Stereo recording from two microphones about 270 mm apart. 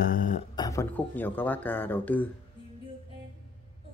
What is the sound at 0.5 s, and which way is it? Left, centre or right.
Speech, centre.